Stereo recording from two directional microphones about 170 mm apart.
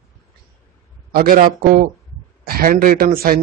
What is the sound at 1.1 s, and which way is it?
Speech, 55° right (ahead or behind).